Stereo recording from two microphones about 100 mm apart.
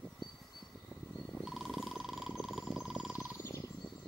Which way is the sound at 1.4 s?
Centre (ahead or behind).